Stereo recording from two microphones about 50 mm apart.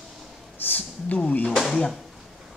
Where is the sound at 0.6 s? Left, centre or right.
Left.